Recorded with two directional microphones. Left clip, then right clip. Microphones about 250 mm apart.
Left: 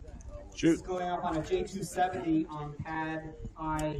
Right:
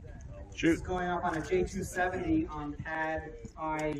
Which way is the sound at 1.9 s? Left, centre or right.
Left.